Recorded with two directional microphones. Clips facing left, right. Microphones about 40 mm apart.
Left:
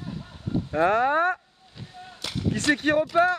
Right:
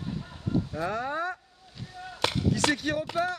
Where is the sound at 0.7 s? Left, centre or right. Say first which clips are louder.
Left 10 dB; left.